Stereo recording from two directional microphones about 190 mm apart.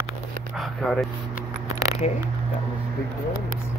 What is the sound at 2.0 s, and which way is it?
Speech, 35° left (ahead or behind).